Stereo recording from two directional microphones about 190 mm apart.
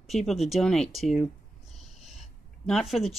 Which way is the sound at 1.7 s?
Centre (ahead or behind).